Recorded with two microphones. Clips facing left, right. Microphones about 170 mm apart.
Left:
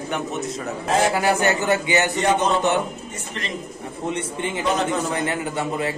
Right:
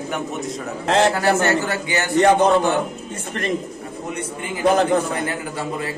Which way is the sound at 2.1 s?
60° right (ahead or behind).